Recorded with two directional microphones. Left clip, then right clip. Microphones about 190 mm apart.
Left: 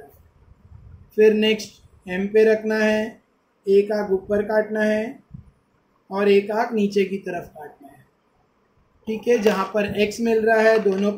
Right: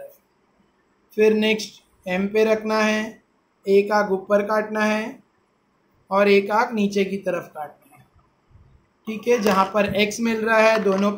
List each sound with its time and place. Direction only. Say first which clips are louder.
1.1 s speech: left 2 dB; 35° right (ahead or behind)
6.0 s speech: right 1 dB; 40° right (ahead or behind)
9.0 s speech: left 1 dB; 40° right (ahead or behind)